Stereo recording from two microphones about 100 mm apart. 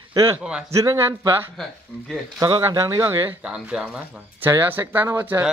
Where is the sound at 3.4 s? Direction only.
10° right (ahead or behind).